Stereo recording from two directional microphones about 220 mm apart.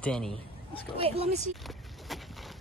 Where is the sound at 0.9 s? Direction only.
25° right (ahead or behind).